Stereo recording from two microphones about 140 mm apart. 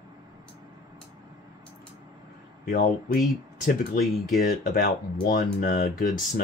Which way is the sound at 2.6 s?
90° left.